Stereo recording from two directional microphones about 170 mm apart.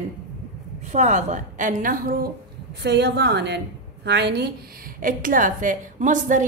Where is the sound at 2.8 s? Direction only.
80° right.